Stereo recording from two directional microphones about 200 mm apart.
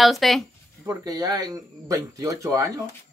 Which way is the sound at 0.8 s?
20° right (ahead or behind).